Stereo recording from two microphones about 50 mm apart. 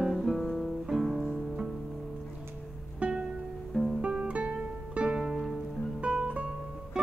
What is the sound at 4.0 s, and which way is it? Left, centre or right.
Guitar, centre.